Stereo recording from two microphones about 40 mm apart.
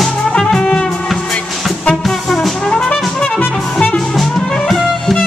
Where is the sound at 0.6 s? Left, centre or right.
Left.